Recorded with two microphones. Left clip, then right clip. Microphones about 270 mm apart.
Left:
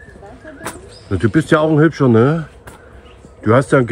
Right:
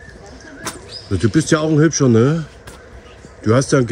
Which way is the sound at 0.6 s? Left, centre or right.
Centre.